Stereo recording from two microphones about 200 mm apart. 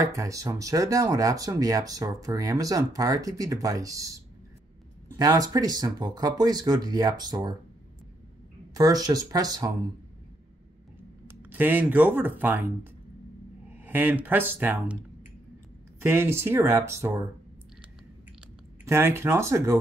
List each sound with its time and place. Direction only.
0.0 s speech: 15° right (ahead or behind)
8.7 s speech: 20° right (ahead or behind)
11.2 s speech: 10° right (ahead or behind)
13.7 s speech: 10° right (ahead or behind)
16.0 s speech: 10° right (ahead or behind)
18.9 s speech: 10° right (ahead or behind)